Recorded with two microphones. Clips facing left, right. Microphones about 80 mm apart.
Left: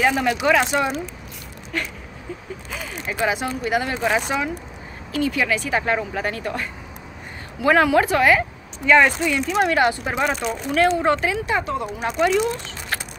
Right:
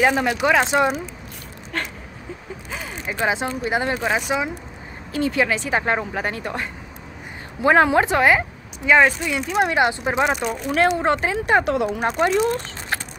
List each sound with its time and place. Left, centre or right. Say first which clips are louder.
0.0 s speech: right 1 dB; right
1.7 s speech: even; right
3.1 s speech: even; right
3.9 s speech: even; centre
5.1 s speech: right 1 dB; right; by 9.7 s centre
9.7 s speech: even; right
11.4 s speech: right 5 dB; right
11.7 s speech: right 4 dB; right
12.0 s speech: left 3 dB; right